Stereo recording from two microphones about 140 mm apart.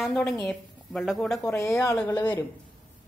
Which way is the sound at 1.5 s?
20° left (ahead or behind).